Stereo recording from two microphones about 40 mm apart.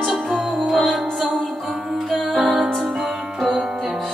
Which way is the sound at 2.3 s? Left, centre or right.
Centre.